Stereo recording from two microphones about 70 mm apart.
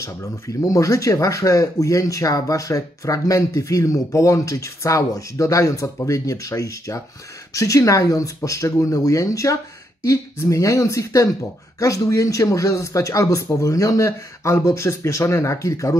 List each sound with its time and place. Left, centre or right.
0.0 s speech: left